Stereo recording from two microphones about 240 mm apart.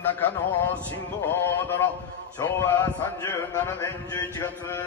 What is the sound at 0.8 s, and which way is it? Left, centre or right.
A man's voice, centre.